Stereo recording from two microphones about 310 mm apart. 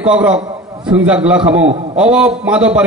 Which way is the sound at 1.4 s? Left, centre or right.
Right.